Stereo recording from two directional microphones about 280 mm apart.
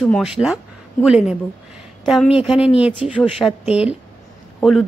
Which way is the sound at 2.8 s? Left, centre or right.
Centre.